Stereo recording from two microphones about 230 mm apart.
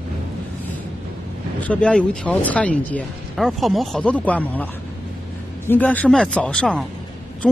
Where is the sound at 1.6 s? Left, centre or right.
Centre.